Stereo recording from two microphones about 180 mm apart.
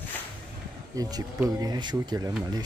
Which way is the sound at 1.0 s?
20° right (ahead or behind).